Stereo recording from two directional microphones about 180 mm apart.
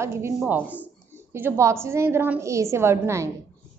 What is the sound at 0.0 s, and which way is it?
A woman's voice, 15° right (ahead or behind).